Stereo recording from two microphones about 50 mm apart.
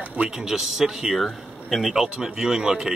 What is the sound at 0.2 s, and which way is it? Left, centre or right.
Speech, centre.